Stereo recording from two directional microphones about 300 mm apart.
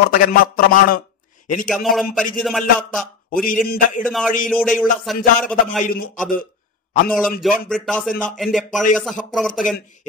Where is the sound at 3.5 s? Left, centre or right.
Left.